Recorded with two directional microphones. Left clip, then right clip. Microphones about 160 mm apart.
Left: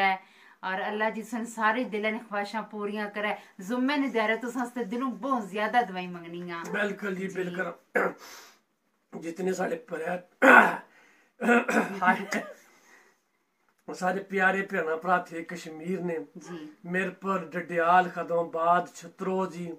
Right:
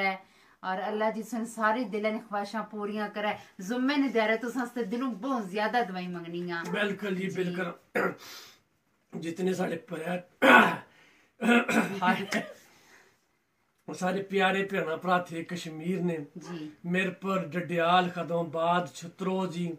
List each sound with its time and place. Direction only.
0.0 s a woman's voice: 10° left (ahead or behind)
6.7 s speech: 15° right (ahead or behind)
9.1 s speech: 10° right (ahead or behind)
13.8 s speech: 15° right (ahead or behind)